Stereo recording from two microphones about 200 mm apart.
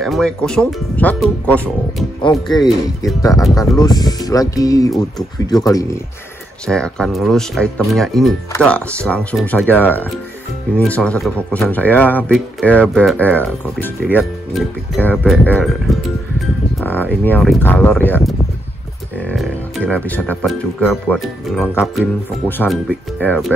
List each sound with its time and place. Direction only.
0.0 s speech: 5° left (ahead or behind)
2.2 s speech: 20° left (ahead or behind)
6.7 s speech: 5° left (ahead or behind)
16.8 s speech: 10° left (ahead or behind)